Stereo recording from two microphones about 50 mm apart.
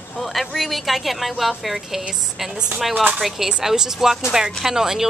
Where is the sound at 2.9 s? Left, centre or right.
Right.